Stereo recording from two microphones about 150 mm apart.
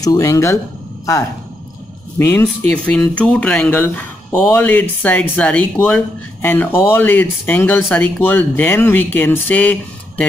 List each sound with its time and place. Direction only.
0.0 s speech: 20° left (ahead or behind)
2.1 s speech: 15° left (ahead or behind)